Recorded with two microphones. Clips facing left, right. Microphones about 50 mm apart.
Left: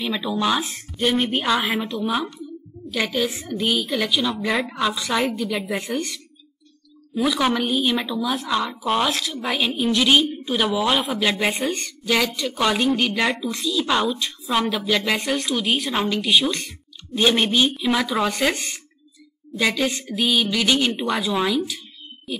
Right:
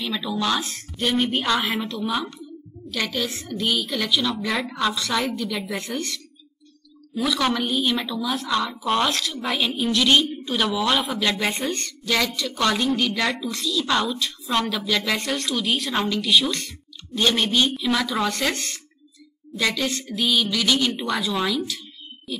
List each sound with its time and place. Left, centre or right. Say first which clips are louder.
0.0 s a woman's voice: left 2 dB; centre
20.1 s music: even; centre
20.4 s a woman's voice: left 2 dB; centre
21.5 s a sound: left 3 dB; centre